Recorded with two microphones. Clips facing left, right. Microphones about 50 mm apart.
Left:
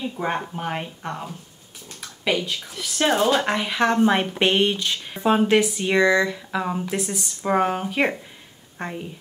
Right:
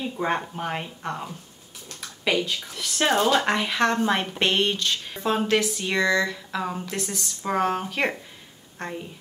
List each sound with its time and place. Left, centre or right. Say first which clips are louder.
0.0 s a woman's voice: even; centre